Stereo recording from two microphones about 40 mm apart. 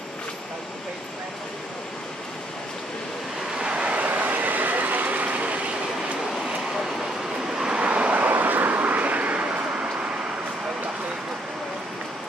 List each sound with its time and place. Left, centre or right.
3.5 s vehicle: right
7.5 s vehicle: centre
7.8 s vehicle: right
8.3 s vehicle: right